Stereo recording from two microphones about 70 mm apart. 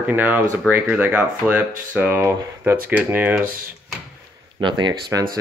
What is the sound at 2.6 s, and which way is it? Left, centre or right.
Speech, right.